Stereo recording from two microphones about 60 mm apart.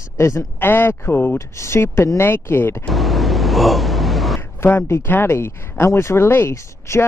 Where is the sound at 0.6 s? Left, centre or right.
Left.